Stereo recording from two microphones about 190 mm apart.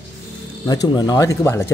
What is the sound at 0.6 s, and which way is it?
Speech, 20° left (ahead or behind).